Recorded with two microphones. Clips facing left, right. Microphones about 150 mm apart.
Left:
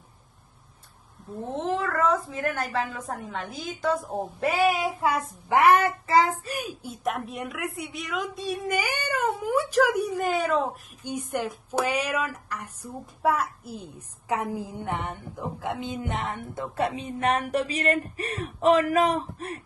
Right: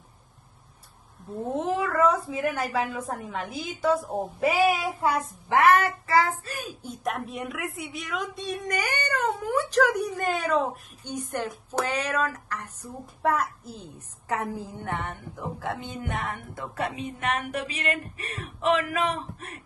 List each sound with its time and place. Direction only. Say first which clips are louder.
1.5 s a woman's voice: right 1 dB; 10° right (ahead or behind)
5.5 s child singing: left 1 dB; 20° left (ahead or behind)
6.4 s a woman's voice: left 3 dB; 15° left (ahead or behind); by 19.6 s 40° left (ahead or behind)